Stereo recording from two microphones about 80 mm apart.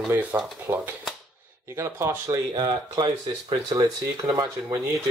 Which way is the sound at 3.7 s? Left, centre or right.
Right.